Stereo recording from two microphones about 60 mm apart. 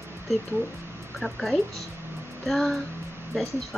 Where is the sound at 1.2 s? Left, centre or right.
Centre.